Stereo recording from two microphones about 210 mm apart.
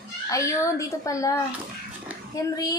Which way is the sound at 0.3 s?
15° left (ahead or behind).